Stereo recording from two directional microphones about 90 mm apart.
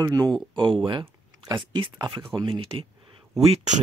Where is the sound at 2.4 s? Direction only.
75° right (ahead or behind).